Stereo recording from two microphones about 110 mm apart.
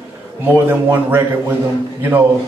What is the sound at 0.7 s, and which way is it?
A man's voice, 20° right (ahead or behind).